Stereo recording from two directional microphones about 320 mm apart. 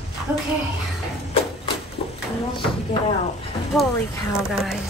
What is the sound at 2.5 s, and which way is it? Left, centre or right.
Speech, centre.